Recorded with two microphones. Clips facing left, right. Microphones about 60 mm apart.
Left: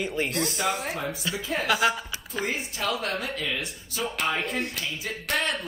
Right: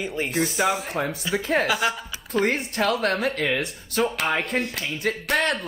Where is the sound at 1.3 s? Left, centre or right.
Right.